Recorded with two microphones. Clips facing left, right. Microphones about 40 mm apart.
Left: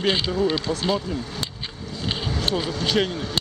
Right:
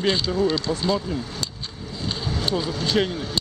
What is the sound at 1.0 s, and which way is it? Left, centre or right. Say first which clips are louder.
Speech: even; centre.